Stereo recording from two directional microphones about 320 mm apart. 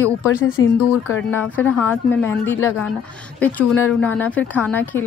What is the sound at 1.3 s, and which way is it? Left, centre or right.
Speech, centre.